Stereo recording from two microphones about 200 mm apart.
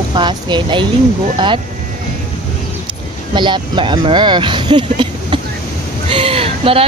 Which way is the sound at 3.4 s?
25° right (ahead or behind).